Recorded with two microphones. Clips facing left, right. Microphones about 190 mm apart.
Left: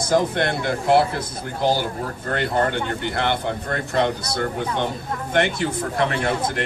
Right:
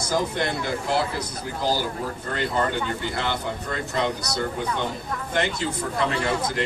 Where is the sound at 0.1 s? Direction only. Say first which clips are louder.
Left 5 dB; 60° left (ahead or behind).